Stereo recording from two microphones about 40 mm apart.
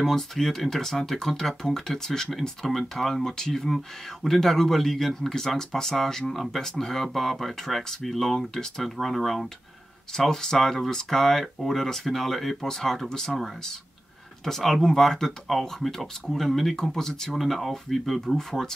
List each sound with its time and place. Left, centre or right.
0.0 s speech: centre
14.4 s speech: centre
17.4 s speech: centre
18.2 s speech: centre